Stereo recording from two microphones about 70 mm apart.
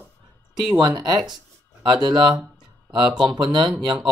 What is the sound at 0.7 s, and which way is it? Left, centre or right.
Speech, right.